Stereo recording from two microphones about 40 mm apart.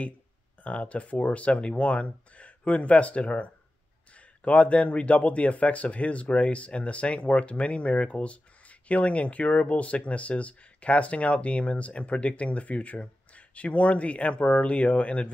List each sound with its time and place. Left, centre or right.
0.7 s speech: left